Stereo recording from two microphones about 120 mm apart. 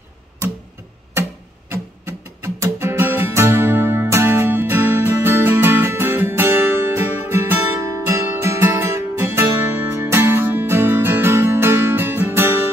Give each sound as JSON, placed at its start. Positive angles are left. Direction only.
{"t": 1.7, "sound": "music", "side_deg": -25}